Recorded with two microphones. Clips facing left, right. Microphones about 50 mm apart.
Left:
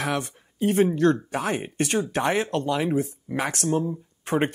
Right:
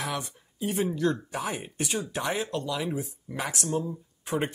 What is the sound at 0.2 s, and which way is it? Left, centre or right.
Speech, left.